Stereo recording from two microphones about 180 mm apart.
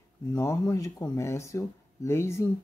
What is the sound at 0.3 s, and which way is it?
Speech, 20° left (ahead or behind).